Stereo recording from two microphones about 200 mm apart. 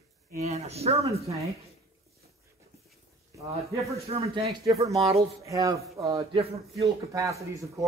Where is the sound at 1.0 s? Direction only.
15° right (ahead or behind).